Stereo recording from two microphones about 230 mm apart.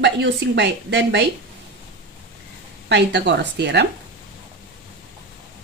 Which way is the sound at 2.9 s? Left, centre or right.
Right.